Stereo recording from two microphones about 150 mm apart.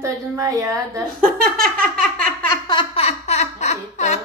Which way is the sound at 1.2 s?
75° right (ahead or behind).